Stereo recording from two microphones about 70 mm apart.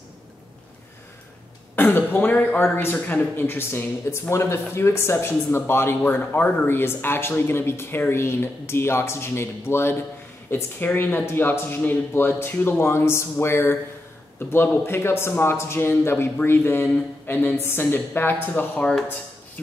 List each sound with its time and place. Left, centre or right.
2.0 s speech: left